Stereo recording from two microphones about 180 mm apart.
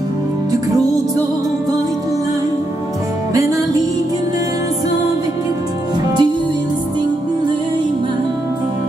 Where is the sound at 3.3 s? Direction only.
20° right (ahead or behind).